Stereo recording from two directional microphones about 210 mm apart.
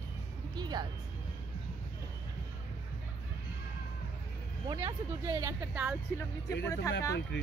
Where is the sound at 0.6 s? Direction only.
20° right (ahead or behind).